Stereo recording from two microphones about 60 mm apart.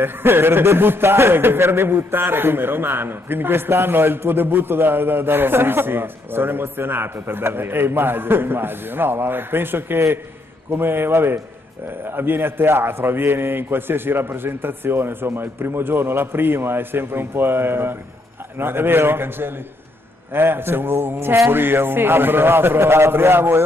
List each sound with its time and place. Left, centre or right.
0.0 s a man's voice: right